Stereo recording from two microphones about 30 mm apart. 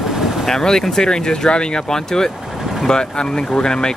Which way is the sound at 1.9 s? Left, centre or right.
Centre.